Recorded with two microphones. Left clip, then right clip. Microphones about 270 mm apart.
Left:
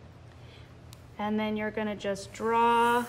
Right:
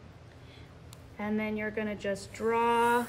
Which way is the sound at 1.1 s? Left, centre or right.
Centre.